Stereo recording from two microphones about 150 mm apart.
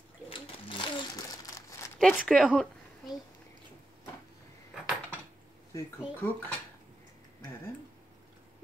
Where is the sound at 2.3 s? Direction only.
Centre (ahead or behind).